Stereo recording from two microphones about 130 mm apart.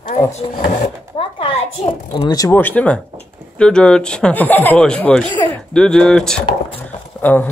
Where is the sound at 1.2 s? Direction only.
40° left (ahead or behind).